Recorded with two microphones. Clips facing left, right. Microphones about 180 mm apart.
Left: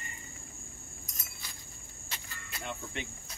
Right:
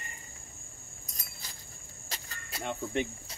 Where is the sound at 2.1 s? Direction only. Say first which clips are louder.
Right 2 dB; 40° right (ahead or behind).